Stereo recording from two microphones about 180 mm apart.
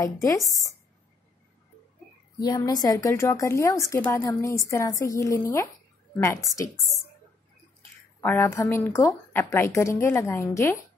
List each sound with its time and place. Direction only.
0.0 s speech: 20° left (ahead or behind)
2.3 s a woman's voice: 20° left (ahead or behind)
8.2 s speech: 10° left (ahead or behind)